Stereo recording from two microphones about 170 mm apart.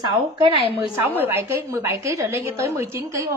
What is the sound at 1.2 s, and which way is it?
A woman's voice, 15° right (ahead or behind).